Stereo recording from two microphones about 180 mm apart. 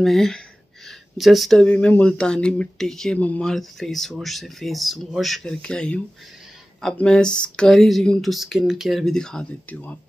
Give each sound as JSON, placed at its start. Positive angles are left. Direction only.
{"t": 0.0, "sound": "speech", "side_deg": 0}